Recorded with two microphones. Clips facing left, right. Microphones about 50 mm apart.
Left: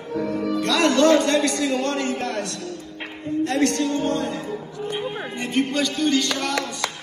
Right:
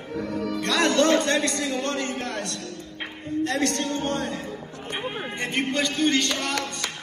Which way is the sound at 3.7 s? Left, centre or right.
Right.